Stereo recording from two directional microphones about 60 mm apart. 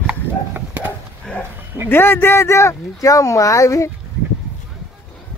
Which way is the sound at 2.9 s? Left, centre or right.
Left.